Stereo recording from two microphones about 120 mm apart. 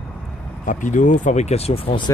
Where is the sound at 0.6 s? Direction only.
90° left; by 2.0 s 55° left (ahead or behind).